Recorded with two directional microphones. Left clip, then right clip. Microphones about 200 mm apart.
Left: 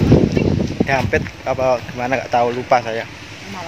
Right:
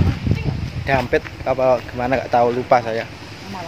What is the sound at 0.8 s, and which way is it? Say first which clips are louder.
Speech: even; 5° right (ahead or behind).